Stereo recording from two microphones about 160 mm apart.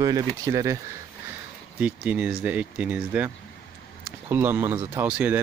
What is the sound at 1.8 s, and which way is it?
Speech, 10° right (ahead or behind).